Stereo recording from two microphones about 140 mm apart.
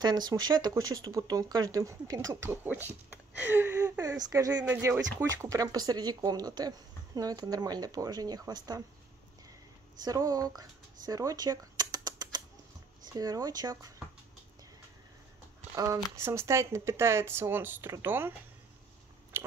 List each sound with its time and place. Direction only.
0.0 s speech: 30° right (ahead or behind); by 2.9 s 15° right (ahead or behind)
3.3 s a sound: 15° right (ahead or behind)
4.2 s speech: 25° right (ahead or behind)
10.0 s speech: 25° right (ahead or behind)
15.7 s speech: 25° right (ahead or behind)
19.3 s biting: 15° right (ahead or behind)